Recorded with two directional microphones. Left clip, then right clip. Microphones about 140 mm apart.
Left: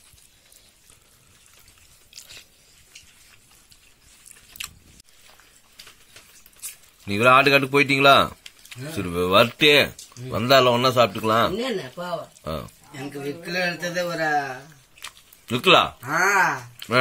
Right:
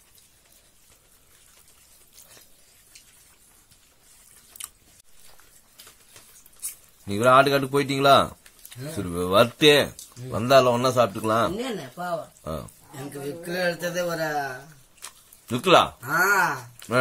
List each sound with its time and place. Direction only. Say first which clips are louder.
7.1 s speech: left 2 dB; 10° left (ahead or behind)
13.5 s a man's voice: even; 35° right (ahead or behind)
15.0 s a sound: left 5 dB; centre (ahead or behind)
16.1 s speech: left 3 dB; 45° right (ahead or behind)